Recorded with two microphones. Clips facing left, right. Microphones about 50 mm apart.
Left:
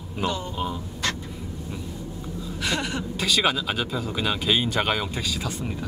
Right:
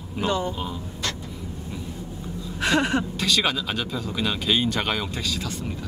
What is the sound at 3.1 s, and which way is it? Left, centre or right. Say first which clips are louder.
Speech: left 1 dB; centre.